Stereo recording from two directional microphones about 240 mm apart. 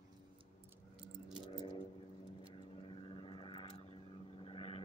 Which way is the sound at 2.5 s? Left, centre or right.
Left.